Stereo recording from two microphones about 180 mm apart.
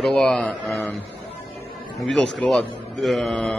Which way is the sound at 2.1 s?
5° left (ahead or behind).